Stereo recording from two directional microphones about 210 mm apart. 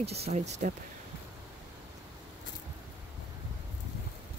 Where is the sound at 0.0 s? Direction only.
30° right (ahead or behind).